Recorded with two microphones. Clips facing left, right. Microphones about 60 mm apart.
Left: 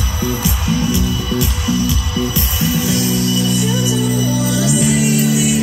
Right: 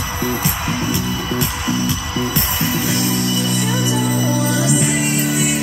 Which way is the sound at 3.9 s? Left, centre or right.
Right.